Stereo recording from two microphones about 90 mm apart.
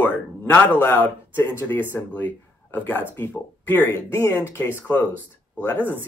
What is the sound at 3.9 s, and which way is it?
Speech, 30° left (ahead or behind).